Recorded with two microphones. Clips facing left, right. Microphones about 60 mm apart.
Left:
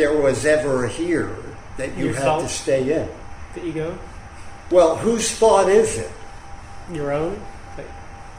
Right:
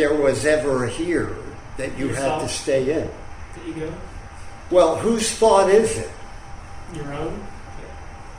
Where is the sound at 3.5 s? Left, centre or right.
Left.